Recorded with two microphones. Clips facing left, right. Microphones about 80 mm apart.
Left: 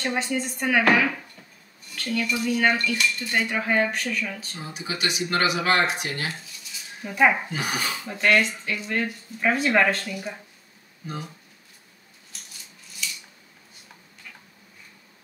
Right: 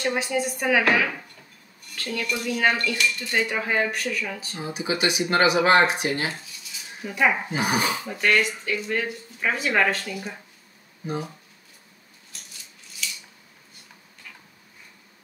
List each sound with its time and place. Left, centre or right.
0.0 s speech: centre
4.6 s speech: centre
7.1 s speech: centre
7.4 s speech: right
8.1 s speech: centre